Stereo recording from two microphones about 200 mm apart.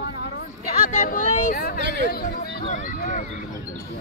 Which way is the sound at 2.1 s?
45° left (ahead or behind).